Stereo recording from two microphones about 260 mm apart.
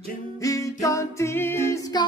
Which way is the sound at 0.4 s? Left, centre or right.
Centre.